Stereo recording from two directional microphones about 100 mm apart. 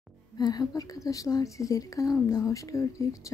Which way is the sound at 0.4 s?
40° left (ahead or behind).